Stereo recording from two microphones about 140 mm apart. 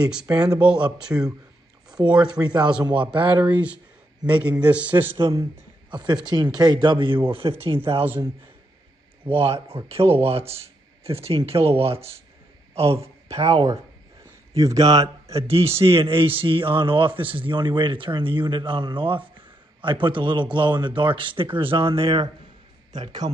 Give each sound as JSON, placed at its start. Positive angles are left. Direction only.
{"t": 0.0, "sound": "a man's voice", "side_deg": -5}
{"t": 1.9, "sound": "a sound", "side_deg": -5}
{"t": 2.4, "sound": "a man's voice", "side_deg": -30}
{"t": 3.1, "sound": "a man's voice", "side_deg": -10}
{"t": 5.1, "sound": "a man's voice", "side_deg": -25}
{"t": 9.8, "sound": "speech", "side_deg": -45}
{"t": 14.5, "sound": "a man's voice", "side_deg": -25}
{"t": 15.3, "sound": "a man's voice", "side_deg": -45}